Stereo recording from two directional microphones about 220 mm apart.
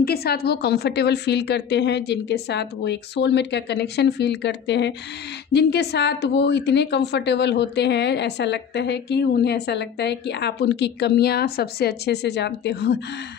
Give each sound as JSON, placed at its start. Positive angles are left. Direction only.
{"t": 0.0, "sound": "a woman's voice", "side_deg": 45}